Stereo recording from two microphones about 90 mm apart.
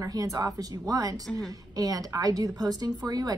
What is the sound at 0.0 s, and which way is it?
A woman's voice, 40° right (ahead or behind).